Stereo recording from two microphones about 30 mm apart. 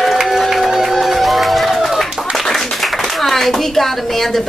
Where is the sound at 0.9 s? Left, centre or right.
Centre.